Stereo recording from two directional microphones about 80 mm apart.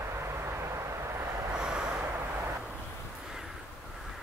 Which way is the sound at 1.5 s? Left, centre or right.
Centre.